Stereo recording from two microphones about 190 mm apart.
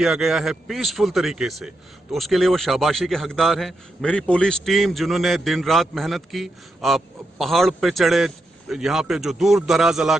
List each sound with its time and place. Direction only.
0.0 s a man's voice: centre (ahead or behind)